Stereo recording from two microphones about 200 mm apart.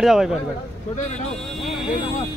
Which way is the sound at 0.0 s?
Centre (ahead or behind).